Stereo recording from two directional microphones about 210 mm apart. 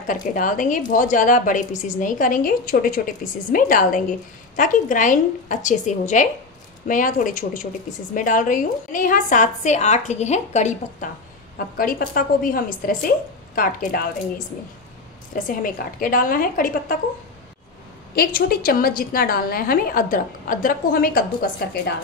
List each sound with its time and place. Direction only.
0.0 s a woman's voice: 40° left (ahead or behind)
15.3 s a woman's voice: 40° left (ahead or behind)
18.1 s a woman's voice: 45° left (ahead or behind)